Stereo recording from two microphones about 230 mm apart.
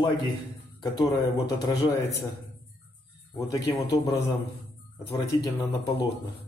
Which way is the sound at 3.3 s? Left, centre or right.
Centre.